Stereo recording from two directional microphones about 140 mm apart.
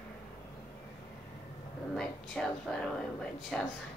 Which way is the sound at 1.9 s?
5° left (ahead or behind).